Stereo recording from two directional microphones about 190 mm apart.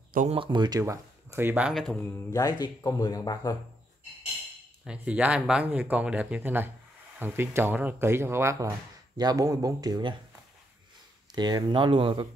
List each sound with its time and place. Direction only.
0.3 s speech: 25° right (ahead or behind); by 2.0 s centre (ahead or behind)
2.3 s speech: 20° left (ahead or behind)
4.8 s speech: 5° right (ahead or behind)
11.3 s speech: 20° right (ahead or behind)